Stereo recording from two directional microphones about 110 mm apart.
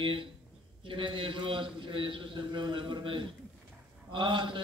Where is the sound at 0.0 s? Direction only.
50° right (ahead or behind).